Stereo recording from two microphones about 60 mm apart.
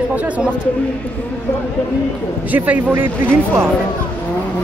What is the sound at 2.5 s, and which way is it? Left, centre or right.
Speech, right.